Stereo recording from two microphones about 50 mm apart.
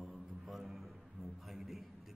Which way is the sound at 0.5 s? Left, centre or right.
Centre.